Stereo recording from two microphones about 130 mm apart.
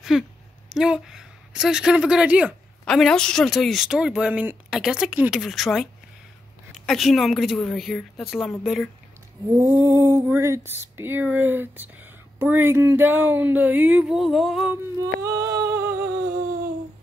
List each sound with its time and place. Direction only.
0.1 s speech: 5° right (ahead or behind)
2.8 s speech: 5° left (ahead or behind)
9.5 s speech: 20° right (ahead or behind); by 14.7 s centre (ahead or behind)
15.0 s a sound: 25° right (ahead or behind)